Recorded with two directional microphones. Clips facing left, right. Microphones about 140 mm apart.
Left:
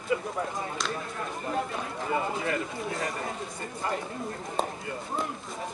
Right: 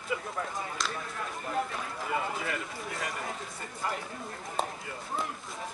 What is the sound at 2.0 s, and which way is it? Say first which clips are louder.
Speech: left 3 dB; 25° left (ahead or behind).